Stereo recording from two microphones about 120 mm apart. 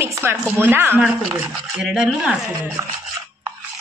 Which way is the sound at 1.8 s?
5° right (ahead or behind).